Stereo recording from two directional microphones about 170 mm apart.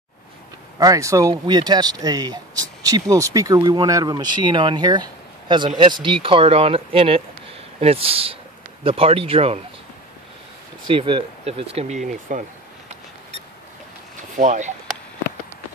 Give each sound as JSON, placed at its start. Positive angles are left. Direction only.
{"t": 0.7, "sound": "speech", "side_deg": -20}
{"t": 10.9, "sound": "speech", "side_deg": -30}
{"t": 12.1, "sound": "speech", "side_deg": -50}
{"t": 14.3, "sound": "speech", "side_deg": -45}